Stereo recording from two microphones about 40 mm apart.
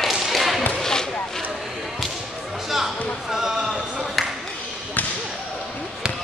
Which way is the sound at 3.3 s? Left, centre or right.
Centre.